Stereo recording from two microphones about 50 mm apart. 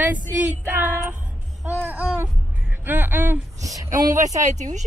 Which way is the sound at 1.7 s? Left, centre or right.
Right.